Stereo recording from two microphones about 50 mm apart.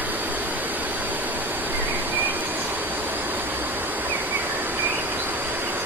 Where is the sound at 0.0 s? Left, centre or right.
Right.